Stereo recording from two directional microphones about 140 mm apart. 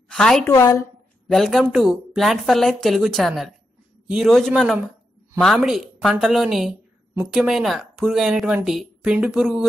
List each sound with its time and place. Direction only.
0.1 s a woman's voice: 5° left (ahead or behind)
0.5 s a woman's voice: 20° left (ahead or behind)
1.3 s speech: centre (ahead or behind)